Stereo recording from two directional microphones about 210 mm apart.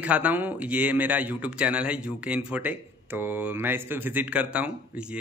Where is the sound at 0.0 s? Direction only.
5° right (ahead or behind).